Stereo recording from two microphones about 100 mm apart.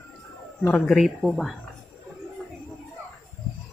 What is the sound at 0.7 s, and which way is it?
Speech, centre (ahead or behind).